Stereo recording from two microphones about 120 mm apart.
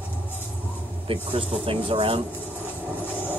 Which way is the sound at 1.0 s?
50° right (ahead or behind).